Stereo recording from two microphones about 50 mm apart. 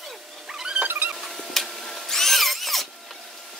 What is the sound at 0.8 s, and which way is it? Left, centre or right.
Vehicle, right.